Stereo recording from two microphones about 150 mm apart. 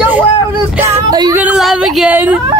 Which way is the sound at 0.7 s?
20° right (ahead or behind).